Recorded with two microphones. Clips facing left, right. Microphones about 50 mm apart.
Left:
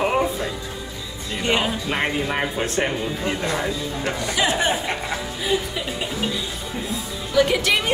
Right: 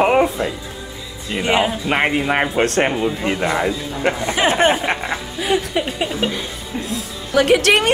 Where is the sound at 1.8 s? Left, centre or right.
Right.